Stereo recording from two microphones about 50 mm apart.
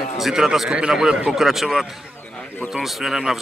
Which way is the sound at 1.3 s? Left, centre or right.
Centre.